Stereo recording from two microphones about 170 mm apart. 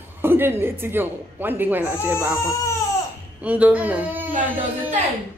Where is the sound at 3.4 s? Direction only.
10° right (ahead or behind).